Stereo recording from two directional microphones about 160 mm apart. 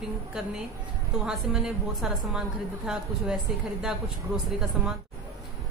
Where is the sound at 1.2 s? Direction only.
5° right (ahead or behind).